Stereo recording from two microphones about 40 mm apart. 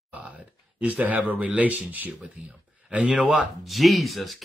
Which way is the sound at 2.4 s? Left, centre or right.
Right.